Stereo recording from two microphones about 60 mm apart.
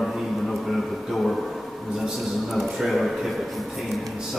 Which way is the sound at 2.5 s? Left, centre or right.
Centre.